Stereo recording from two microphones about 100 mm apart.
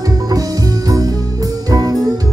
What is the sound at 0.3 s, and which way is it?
Music, 35° right (ahead or behind).